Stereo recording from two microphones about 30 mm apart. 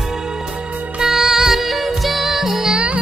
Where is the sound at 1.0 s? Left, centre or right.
Centre.